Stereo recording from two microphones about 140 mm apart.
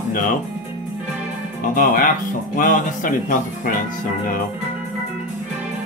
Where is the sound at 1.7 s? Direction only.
85° left.